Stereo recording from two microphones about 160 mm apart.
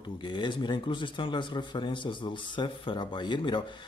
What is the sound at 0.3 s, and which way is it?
Speech, 30° left (ahead or behind).